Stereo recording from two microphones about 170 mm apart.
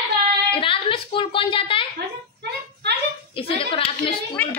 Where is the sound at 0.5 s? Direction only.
30° left (ahead or behind).